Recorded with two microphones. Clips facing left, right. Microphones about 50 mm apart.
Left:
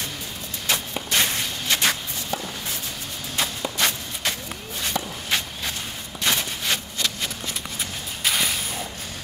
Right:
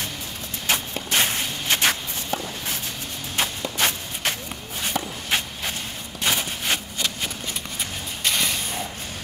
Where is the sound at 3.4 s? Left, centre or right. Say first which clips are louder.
Even; right.